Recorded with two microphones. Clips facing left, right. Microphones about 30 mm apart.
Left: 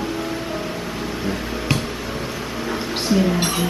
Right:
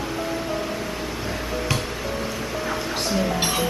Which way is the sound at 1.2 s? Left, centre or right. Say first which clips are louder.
Left 1 dB; centre.